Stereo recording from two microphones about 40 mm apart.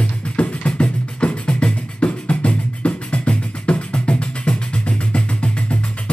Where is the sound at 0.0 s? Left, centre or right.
Left.